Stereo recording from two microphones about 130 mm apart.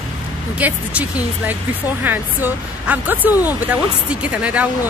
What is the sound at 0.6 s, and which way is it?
Speech, 10° right (ahead or behind).